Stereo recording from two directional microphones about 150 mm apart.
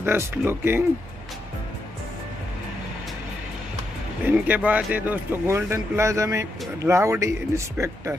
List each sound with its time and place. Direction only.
0.0 s speech: 15° right (ahead or behind)
4.2 s speech: 10° right (ahead or behind)